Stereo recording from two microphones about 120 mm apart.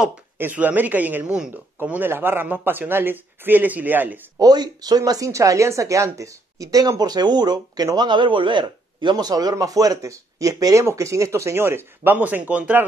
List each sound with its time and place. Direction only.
0.4 s a man's voice: 15° right (ahead or behind)
4.4 s speech: 35° right (ahead or behind); by 12.8 s 10° right (ahead or behind)